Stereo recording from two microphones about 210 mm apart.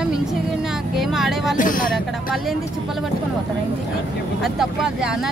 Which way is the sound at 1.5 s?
40° left (ahead or behind).